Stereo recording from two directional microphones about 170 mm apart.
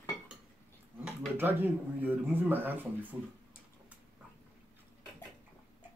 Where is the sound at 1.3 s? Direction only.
10° right (ahead or behind).